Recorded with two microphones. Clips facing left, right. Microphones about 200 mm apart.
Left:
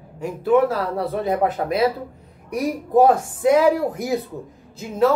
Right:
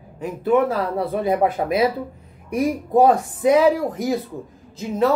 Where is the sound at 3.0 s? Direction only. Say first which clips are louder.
Even; centre (ahead or behind).